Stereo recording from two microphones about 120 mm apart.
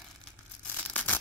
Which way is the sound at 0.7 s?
15° left (ahead or behind).